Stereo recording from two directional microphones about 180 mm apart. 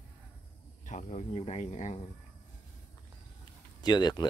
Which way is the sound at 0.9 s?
40° left (ahead or behind).